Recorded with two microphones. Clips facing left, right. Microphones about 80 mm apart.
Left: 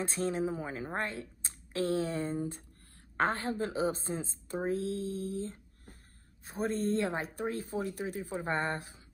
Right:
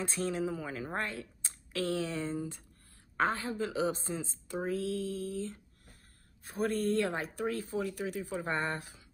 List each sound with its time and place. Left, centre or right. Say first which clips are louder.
0.0 s a woman's voice: left 1 dB; left
6.4 s speech: right 1 dB; left